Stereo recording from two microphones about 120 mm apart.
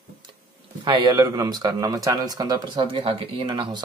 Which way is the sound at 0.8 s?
35° right (ahead or behind).